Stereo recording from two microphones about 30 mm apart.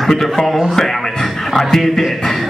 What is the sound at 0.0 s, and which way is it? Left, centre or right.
Speech, centre.